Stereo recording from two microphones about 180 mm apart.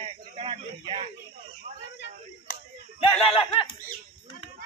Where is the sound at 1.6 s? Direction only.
40° right (ahead or behind).